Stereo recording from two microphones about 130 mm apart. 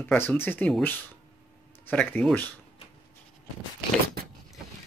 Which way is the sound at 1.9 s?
10° left (ahead or behind).